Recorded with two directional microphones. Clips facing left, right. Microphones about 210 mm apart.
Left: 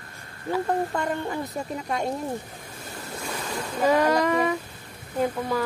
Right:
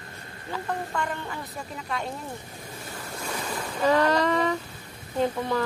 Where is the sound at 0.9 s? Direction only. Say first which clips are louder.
Left 4 dB; 40° left (ahead or behind).